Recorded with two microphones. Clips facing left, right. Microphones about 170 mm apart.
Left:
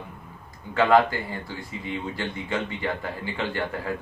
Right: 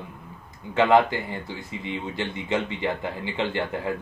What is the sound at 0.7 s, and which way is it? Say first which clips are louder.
Speech: right 1 dB; 20° right (ahead or behind).